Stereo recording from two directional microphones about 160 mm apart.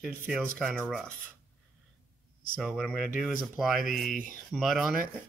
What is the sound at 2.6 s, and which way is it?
Speech, centre (ahead or behind).